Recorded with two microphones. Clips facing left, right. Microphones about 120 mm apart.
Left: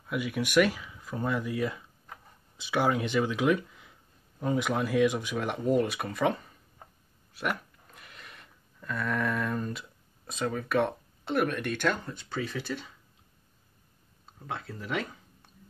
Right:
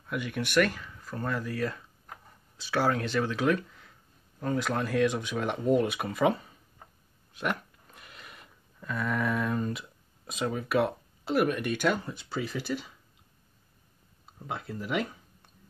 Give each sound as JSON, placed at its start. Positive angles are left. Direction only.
{"t": 0.0, "sound": "speech", "side_deg": 5}
{"t": 14.4, "sound": "speech", "side_deg": -10}